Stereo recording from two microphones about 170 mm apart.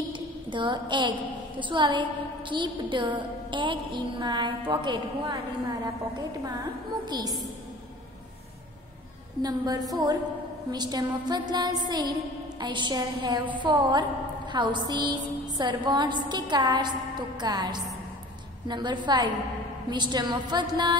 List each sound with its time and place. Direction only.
0.1 s a sound: 30° right (ahead or behind)
1.6 s music: 30° right (ahead or behind)
7.1 s music: 20° right (ahead or behind)
9.4 s music: 25° right (ahead or behind)